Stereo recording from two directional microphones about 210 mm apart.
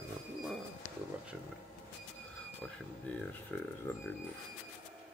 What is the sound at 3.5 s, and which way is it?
Speech, 10° left (ahead or behind).